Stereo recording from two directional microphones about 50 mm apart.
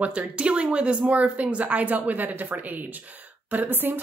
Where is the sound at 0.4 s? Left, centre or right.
Right.